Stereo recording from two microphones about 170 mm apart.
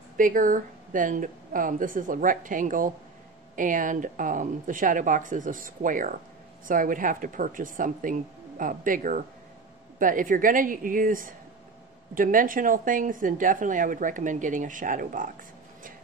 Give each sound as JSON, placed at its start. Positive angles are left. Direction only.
{"t": 0.2, "sound": "speech", "side_deg": -50}